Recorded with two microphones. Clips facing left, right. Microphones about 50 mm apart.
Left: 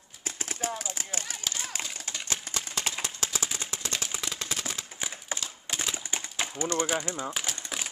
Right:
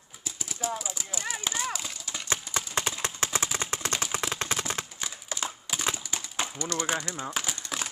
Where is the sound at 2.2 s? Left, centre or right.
Right.